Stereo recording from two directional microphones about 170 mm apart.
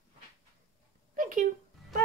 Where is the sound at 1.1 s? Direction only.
50° right (ahead or behind).